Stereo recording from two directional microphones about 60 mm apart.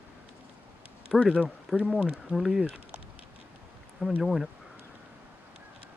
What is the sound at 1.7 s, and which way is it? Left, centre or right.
Speech, centre.